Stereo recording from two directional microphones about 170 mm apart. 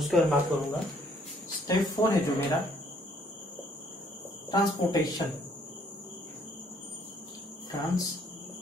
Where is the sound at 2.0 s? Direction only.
25° left (ahead or behind).